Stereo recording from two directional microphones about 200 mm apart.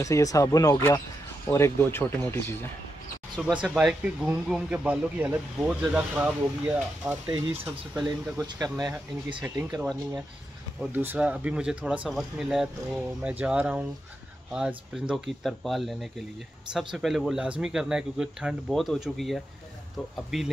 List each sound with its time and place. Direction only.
0.0 s speech: 15° left (ahead or behind); by 8.4 s 5° right (ahead or behind)
8.4 s speech: 20° right (ahead or behind); by 20.4 s centre (ahead or behind)